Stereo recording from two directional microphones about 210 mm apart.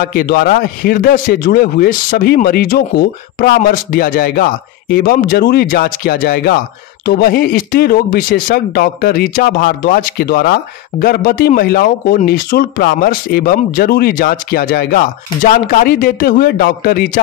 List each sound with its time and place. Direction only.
0.0 s a man's voice: 45° left (ahead or behind)